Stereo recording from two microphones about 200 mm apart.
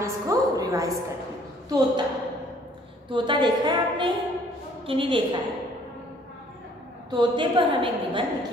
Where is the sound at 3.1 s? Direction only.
25° right (ahead or behind).